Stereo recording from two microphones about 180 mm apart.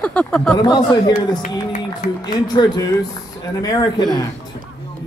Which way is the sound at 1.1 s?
45° left (ahead or behind).